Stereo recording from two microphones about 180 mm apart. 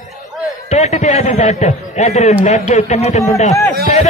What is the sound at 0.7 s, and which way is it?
A man's voice, 40° left (ahead or behind).